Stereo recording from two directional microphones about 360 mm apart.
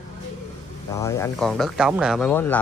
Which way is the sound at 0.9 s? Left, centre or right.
Centre.